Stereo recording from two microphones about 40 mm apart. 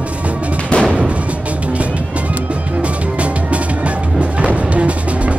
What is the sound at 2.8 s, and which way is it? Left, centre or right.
Music, right.